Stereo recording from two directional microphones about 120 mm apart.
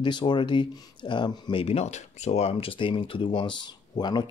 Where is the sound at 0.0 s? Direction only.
40° left (ahead or behind).